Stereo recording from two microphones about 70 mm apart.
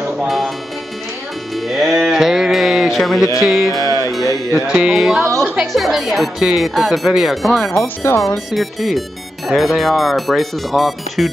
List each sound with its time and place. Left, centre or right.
1.7 s music: centre
3.4 s speech: centre
3.7 s music: left
4.1 s music: centre
4.6 s speech: centre
7.8 s speech: left
8.5 s speech: centre